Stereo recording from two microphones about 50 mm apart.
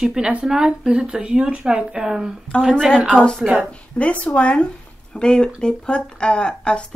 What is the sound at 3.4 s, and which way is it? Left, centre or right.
Speech, right.